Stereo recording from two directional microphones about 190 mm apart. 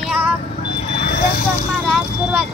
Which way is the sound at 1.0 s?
50° left (ahead or behind).